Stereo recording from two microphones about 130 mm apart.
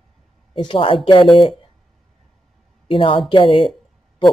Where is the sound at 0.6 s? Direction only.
40° left (ahead or behind).